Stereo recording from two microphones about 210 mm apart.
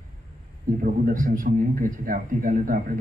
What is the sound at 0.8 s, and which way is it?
A man's voice, 40° right (ahead or behind).